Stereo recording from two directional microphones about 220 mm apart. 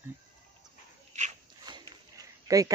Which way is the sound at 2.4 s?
15° right (ahead or behind).